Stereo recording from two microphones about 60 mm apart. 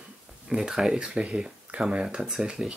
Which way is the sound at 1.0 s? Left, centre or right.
Centre.